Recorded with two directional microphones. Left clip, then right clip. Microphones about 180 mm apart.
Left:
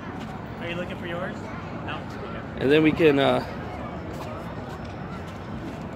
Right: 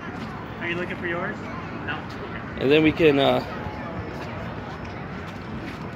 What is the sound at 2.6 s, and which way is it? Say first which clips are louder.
Speech: right 1 dB; 10° right (ahead or behind).